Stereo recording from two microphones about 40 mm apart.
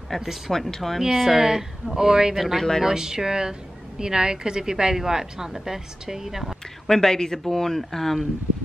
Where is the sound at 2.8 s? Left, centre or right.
Centre.